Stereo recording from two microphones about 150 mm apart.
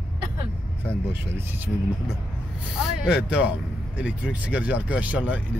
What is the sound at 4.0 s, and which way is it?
Speech, 5° right (ahead or behind).